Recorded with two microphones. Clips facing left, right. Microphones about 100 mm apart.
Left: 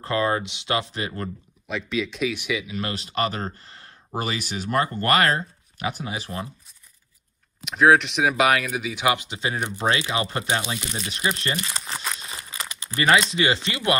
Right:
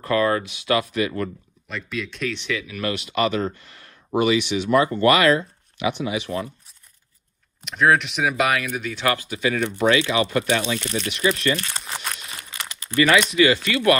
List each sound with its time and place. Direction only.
0.0 s speech: 25° left (ahead or behind)
1.7 s speech: centre (ahead or behind); by 2.9 s 20° left (ahead or behind)
2.9 s speech: 35° left (ahead or behind)
7.6 s speech: centre (ahead or behind)
8.9 s speech: 15° left (ahead or behind)
11.8 s crumpling: centre (ahead or behind)
12.2 s crumpling: 30° left (ahead or behind)
12.8 s speech: 30° left (ahead or behind)